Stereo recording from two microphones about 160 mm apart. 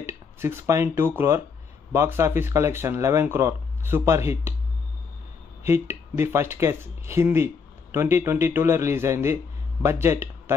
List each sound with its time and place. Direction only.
0.0 s speech: 15° right (ahead or behind)
5.6 s speech: 15° right (ahead or behind)